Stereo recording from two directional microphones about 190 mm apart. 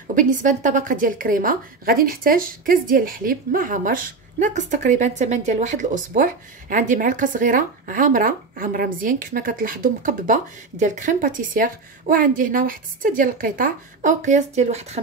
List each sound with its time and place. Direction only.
0.1 s a woman's voice: 40° right (ahead or behind)